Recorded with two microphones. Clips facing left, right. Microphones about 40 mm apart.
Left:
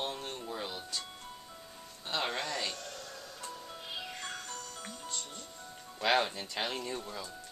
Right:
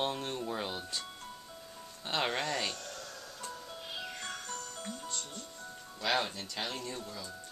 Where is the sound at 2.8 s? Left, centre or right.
Centre.